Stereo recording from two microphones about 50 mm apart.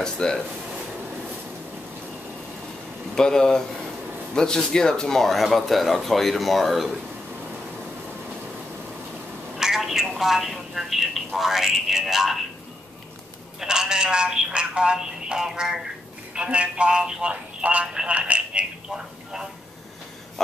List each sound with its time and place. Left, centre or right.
0.0 s speech: centre
3.2 s a woman's voice: centre
9.6 s a woman's voice: centre
13.6 s speech: centre
16.3 s speech: right